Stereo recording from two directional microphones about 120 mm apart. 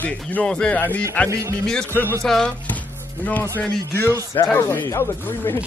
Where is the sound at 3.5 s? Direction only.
10° left (ahead or behind).